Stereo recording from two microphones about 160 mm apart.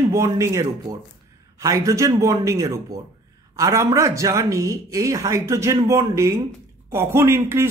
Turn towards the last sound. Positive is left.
turn(degrees=-15)  # may be behind; listen again after turning